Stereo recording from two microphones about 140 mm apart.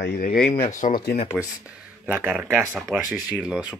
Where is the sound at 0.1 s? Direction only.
90° left.